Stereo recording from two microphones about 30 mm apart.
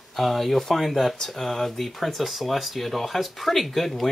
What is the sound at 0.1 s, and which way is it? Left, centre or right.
Speech, centre.